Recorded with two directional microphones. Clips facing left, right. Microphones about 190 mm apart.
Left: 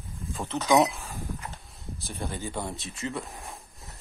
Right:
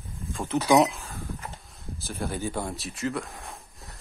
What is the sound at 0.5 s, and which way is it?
Speech, 15° right (ahead or behind).